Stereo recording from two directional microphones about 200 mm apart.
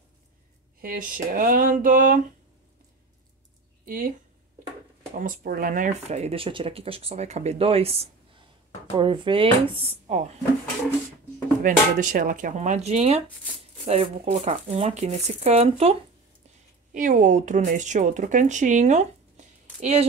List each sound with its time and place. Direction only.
0.7 s speech: 45° right (ahead or behind)
3.8 s speech: 45° right (ahead or behind)
5.1 s speech: 45° right (ahead or behind)
11.6 s speech: 40° right (ahead or behind)